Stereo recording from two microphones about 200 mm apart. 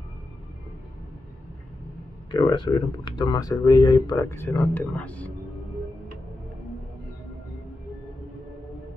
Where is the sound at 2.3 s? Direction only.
20° left (ahead or behind).